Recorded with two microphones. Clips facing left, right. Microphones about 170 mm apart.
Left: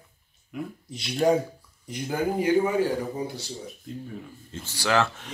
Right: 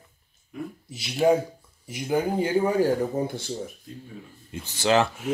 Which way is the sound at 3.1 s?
50° right (ahead or behind).